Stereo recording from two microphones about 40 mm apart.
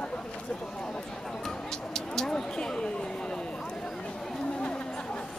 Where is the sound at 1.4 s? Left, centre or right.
Centre.